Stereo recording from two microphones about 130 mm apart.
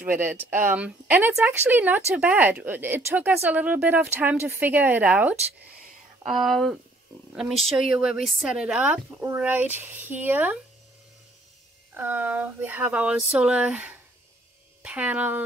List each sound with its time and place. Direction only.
0.0 s speech: 15° right (ahead or behind)
6.2 s speech: centre (ahead or behind)
11.9 s speech: 15° right (ahead or behind)